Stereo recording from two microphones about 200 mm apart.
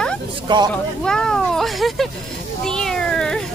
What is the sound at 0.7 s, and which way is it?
Speech, 5° left (ahead or behind).